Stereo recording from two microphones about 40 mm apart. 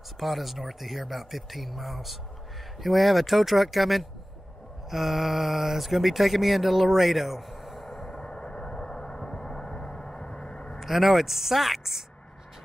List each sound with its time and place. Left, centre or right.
0.2 s speech: centre
8.2 s vehicle: centre
10.8 s speech: centre